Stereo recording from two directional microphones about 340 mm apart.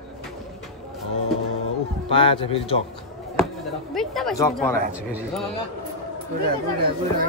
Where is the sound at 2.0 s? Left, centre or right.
Centre.